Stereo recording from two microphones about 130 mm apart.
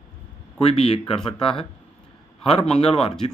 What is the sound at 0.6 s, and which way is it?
Speech, 50° left (ahead or behind).